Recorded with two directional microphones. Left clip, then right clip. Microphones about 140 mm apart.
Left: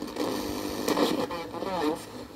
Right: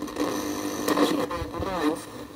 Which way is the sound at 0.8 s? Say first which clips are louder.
Right 3 dB; centre (ahead or behind).